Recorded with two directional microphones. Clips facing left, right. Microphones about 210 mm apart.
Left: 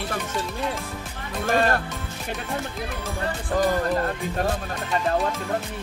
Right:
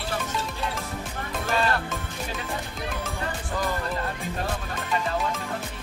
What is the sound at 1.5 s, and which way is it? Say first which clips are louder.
Speech: left 4 dB; 50° left (ahead or behind).